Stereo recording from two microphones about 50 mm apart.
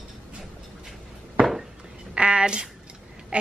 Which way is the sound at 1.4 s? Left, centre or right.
Right.